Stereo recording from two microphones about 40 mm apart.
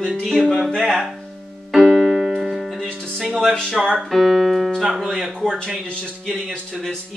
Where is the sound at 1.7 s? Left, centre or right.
Centre.